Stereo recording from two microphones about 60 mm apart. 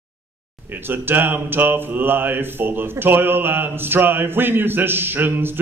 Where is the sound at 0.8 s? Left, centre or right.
Right.